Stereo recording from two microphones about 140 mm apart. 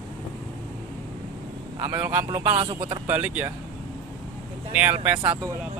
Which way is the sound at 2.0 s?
15° right (ahead or behind).